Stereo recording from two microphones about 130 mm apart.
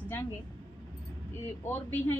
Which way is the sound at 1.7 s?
15° left (ahead or behind).